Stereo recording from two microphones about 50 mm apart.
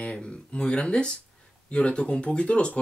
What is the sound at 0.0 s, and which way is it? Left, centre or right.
Speech, left.